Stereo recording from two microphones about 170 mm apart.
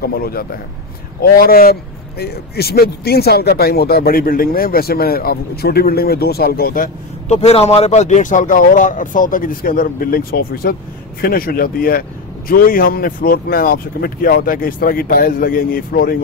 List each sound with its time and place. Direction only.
0.0 s speech: 65° left (ahead or behind)
7.2 s speech: 40° left (ahead or behind); by 16.2 s 60° left (ahead or behind)